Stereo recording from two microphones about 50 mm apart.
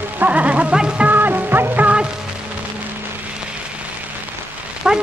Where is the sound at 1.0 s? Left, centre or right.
Right.